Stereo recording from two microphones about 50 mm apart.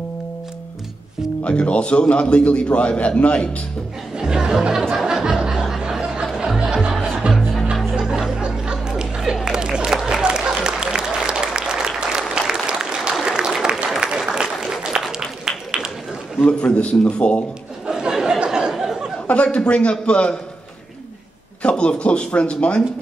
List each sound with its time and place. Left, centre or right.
1.4 s a man's voice: left
4.2 s speech: centre
4.9 s music: centre
7.9 s chatter: centre
10.2 s applause: centre
15.0 s a sound: centre
16.4 s a man's voice: left
17.8 s a sound: centre
19.2 s a man's voice: left
21.6 s a man's voice: left